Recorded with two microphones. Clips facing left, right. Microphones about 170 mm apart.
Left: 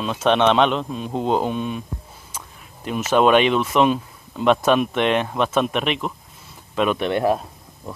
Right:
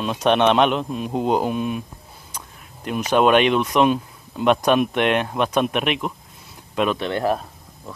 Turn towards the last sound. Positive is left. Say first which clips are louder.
# left 2 dB
turn(degrees=20)  # may be behind; listen again after turning